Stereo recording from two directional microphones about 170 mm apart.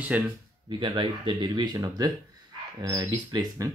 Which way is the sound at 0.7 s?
30° right (ahead or behind).